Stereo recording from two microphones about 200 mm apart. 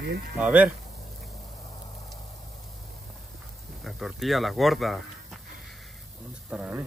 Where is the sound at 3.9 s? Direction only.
Centre (ahead or behind).